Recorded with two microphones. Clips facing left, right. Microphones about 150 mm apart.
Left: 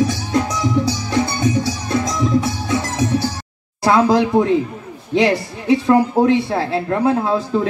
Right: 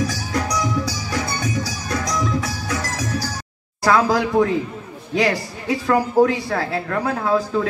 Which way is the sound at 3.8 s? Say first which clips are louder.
Left 3 dB; 25° left (ahead or behind).